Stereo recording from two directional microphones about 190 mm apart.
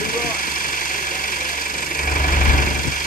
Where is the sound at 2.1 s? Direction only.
45° left (ahead or behind).